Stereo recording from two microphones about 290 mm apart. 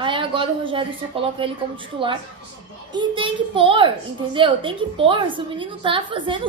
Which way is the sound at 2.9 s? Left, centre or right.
Centre.